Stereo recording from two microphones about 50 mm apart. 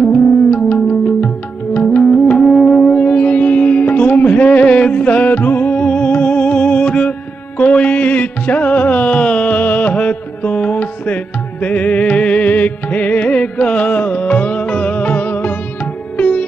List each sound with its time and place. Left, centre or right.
0.1 s music: left
2.4 s music: centre
2.7 s music: centre
3.0 s music: left
5.8 s music: left